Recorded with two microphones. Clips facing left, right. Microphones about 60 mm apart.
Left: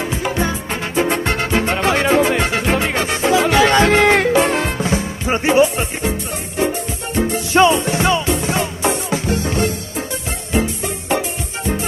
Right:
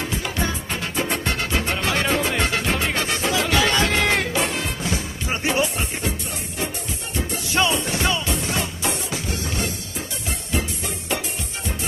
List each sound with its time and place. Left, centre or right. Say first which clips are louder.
0.0 s music: left 6 dB; left
1.0 s music: left 6 dB; left
3.6 s music: left 8 dB; left
4.9 s music: left 8 dB; left
7.2 s music: left 9 dB; left